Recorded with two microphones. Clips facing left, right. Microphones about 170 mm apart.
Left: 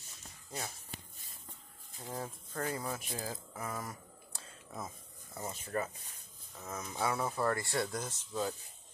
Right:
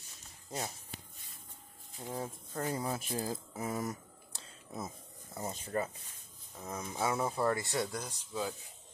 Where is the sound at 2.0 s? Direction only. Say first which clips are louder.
Right 2 dB; 15° right (ahead or behind).